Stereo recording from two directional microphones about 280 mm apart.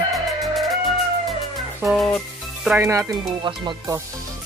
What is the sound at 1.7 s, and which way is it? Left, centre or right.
Speech, centre.